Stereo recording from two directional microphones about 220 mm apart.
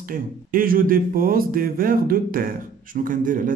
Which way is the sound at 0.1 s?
40° right (ahead or behind).